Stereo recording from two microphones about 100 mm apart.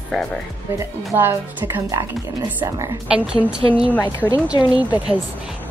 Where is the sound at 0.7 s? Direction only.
25° right (ahead or behind).